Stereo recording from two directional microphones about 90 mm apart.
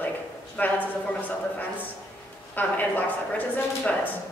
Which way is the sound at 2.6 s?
20° left (ahead or behind).